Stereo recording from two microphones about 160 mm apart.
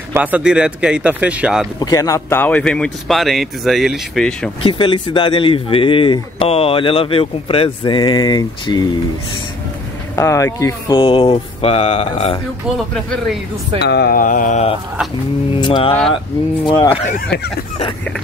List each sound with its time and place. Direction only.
0.1 s speech: 10° right (ahead or behind)
1.8 s speech: 20° left (ahead or behind); by 4.5 s 5° left (ahead or behind)
4.6 s speech: 30° left (ahead or behind)
10.1 s speech: 20° left (ahead or behind)
11.0 s speech: 35° left (ahead or behind)
12.7 s speech: centre (ahead or behind)
13.7 s speech: 90° left; by 14.8 s 45° left (ahead or behind)
15.5 s speech: 30° left (ahead or behind)